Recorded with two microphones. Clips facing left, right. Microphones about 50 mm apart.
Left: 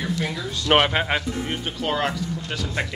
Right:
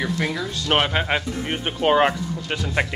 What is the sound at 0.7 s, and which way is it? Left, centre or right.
Speech, centre.